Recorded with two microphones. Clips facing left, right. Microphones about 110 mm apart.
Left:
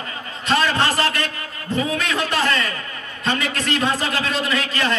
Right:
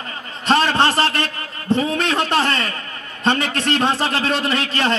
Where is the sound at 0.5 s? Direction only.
30° right (ahead or behind).